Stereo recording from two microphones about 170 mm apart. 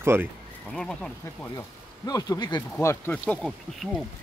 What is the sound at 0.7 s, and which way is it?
Speech, 5° left (ahead or behind).